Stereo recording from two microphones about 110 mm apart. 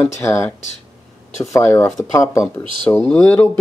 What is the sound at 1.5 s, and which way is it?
Speech, 20° left (ahead or behind).